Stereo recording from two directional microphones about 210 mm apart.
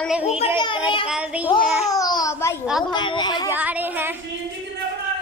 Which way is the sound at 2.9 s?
20° left (ahead or behind).